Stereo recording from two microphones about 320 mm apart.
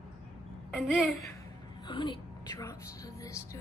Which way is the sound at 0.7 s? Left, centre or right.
Centre.